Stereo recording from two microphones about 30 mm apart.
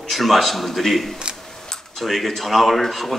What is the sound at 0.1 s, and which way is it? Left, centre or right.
A man's voice, centre.